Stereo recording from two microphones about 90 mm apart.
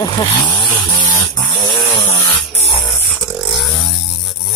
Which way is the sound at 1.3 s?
50° left (ahead or behind).